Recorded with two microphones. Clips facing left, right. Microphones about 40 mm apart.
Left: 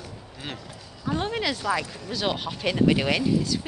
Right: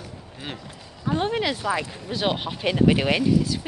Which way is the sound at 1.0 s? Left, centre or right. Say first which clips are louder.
Right 3 dB; centre.